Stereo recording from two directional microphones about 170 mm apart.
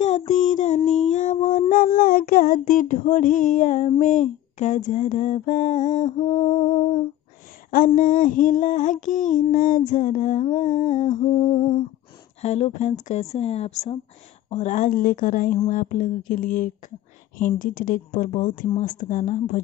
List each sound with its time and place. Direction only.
0.3 s child singing: 45° left (ahead or behind)
4.0 s female singing: 45° left (ahead or behind)
7.7 s female singing: 55° left (ahead or behind)
11.2 s speech: 35° left (ahead or behind)
14.5 s female singing: 45° left (ahead or behind)